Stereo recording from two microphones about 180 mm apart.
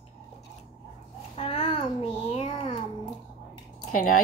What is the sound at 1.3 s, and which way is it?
Babbling, 35° left (ahead or behind).